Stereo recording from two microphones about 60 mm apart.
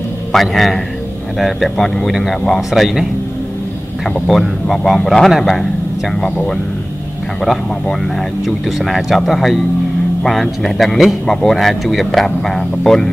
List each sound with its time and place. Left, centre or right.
0.3 s speech: centre
4.3 s speech: centre
6.1 s speech: centre
7.9 s speech: centre